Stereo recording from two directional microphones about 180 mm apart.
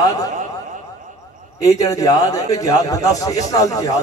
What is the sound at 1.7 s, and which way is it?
A man's voice, 20° left (ahead or behind).